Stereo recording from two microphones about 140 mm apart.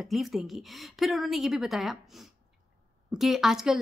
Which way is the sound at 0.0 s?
Centre (ahead or behind).